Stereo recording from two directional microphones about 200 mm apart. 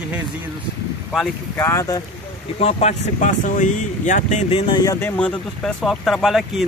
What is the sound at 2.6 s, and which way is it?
Speech, 35° left (ahead or behind).